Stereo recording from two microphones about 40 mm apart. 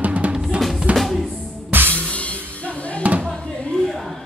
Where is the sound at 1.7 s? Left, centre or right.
Right.